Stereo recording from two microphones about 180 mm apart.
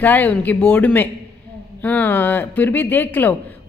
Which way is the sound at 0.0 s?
10° left (ahead or behind).